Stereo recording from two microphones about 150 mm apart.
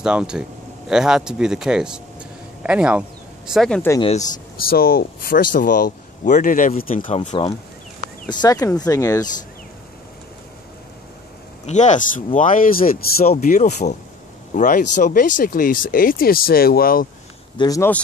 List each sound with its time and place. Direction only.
0.0 s speech: 5° right (ahead or behind)
4.0 s speech: 50° left (ahead or behind)
4.6 s speech: 80° left; by 7.2 s 65° left (ahead or behind)
8.3 s speech: 25° left (ahead or behind)
11.6 s speech: 50° left (ahead or behind)
12.4 s speech: 65° left (ahead or behind)
13.2 s speech: 50° left (ahead or behind); by 17.1 s 75° left (ahead or behind)
17.6 s speech: 25° left (ahead or behind)